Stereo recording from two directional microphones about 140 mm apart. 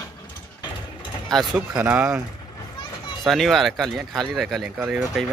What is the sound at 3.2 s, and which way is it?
Speech, centre (ahead or behind).